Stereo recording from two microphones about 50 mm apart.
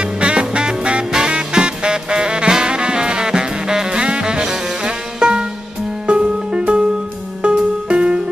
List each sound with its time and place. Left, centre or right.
0.0 s music: right